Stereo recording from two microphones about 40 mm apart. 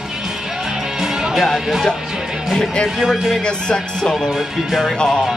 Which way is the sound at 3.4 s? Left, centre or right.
Left.